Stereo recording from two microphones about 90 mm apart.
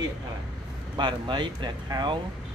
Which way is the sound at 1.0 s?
60° right (ahead or behind).